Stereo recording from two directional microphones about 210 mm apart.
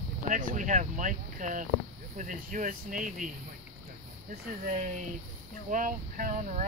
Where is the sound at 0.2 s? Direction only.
40° right (ahead or behind).